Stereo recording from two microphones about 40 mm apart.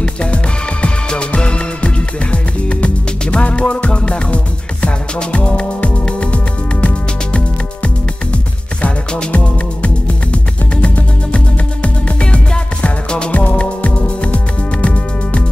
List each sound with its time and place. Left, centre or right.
0.0 s music: left
9.3 s music: left
13.3 s music: left